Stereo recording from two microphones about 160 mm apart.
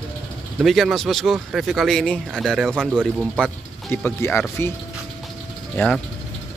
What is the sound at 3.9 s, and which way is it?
Speech, 15° left (ahead or behind).